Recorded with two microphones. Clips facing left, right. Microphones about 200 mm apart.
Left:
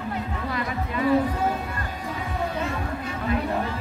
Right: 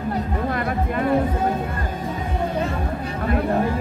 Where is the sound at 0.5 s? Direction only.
50° right (ahead or behind).